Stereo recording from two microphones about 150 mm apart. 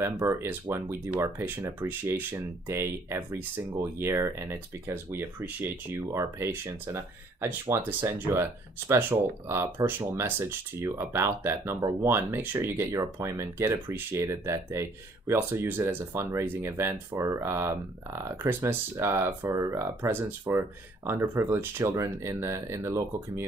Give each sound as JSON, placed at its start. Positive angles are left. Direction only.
{"t": 0.0, "sound": "speech", "side_deg": -20}